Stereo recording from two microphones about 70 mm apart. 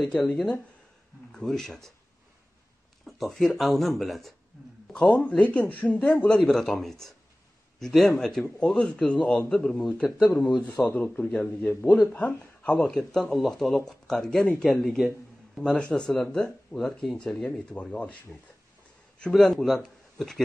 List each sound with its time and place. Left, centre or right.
1.3 s speech: centre
3.1 s speech: centre
4.9 s speech: left
12.8 s speech: centre
15.7 s speech: centre
17.2 s speech: centre
19.3 s speech: centre